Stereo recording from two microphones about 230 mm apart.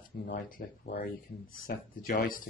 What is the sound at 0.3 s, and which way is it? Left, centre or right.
Speech, left.